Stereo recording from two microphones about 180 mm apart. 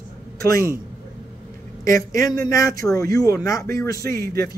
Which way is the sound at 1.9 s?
20° left (ahead or behind).